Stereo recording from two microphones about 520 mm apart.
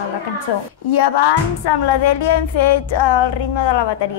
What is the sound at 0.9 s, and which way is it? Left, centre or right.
Music, left.